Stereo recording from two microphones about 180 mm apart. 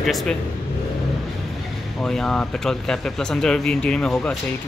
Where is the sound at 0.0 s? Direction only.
Centre (ahead or behind).